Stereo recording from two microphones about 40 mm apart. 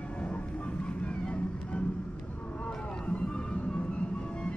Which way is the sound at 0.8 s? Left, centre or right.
Left.